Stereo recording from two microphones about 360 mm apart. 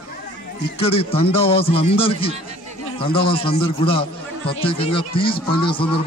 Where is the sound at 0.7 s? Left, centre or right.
Centre.